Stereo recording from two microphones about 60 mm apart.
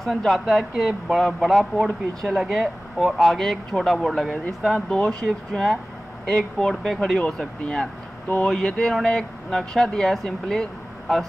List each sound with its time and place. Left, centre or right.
0.0 s speech: centre
4.8 s speech: centre